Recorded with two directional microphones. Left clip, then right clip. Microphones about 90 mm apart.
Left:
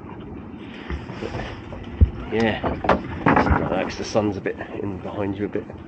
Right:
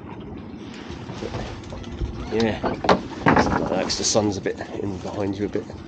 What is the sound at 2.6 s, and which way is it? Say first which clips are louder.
Speech: right 1 dB; 30° right (ahead or behind).